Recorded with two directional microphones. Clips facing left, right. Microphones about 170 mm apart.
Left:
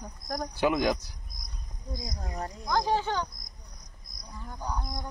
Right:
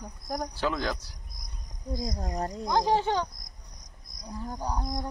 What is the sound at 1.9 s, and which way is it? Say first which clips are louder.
Speech: right 6 dB; 35° right (ahead or behind).